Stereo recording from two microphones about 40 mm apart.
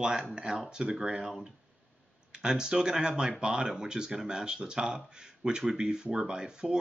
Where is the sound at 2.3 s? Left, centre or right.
Centre.